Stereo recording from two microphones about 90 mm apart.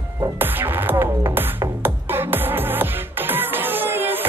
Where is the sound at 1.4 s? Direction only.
25° right (ahead or behind).